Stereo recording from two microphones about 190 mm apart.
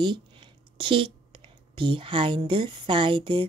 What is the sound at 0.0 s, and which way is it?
Speech, 25° right (ahead or behind).